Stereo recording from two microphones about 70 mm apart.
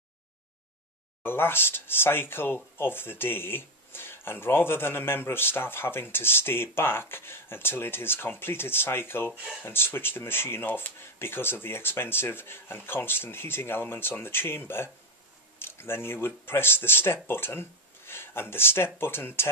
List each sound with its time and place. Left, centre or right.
1.2 s speech: left